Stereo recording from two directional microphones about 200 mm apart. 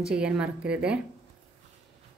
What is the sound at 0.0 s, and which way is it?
Speech, 5° right (ahead or behind).